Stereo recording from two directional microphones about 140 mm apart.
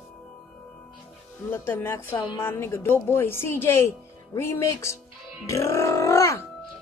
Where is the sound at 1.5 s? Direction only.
15° left (ahead or behind).